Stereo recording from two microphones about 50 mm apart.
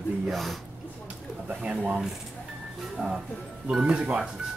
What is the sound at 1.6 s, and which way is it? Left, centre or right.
Speech, right.